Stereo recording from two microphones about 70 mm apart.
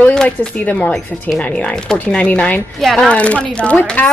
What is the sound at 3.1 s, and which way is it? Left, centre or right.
Speech, centre.